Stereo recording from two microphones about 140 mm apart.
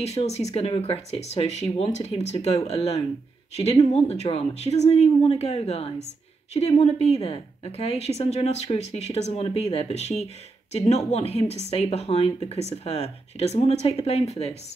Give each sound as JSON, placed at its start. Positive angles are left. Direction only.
{"t": 0.0, "sound": "a woman's voice", "side_deg": 50}